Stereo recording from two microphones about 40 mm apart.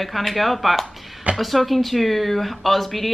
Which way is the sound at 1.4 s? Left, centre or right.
Centre.